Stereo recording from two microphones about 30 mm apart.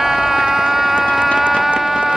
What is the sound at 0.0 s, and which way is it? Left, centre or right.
Music, centre.